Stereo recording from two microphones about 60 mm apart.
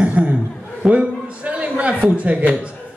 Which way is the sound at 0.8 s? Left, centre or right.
Centre.